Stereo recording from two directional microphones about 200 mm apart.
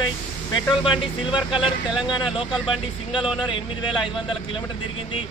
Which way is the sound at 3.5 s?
25° left (ahead or behind).